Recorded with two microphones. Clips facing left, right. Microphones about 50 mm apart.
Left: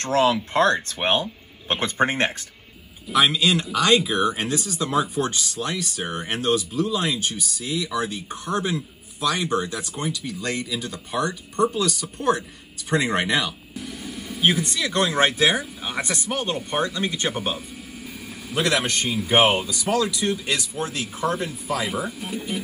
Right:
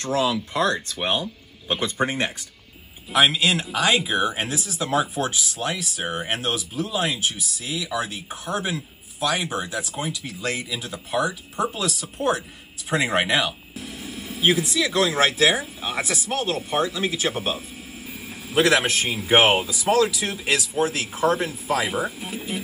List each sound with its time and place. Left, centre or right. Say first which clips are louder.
0.0 s speech: left 3 dB; left
0.9 s speech: left 2 dB; left
1.7 s speech: left 2 dB; left
3.1 s a man's voice: even; centre